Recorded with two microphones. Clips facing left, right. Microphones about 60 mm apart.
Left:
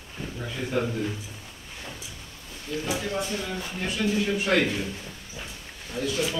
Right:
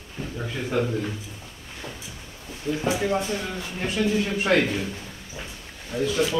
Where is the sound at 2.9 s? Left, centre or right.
Right.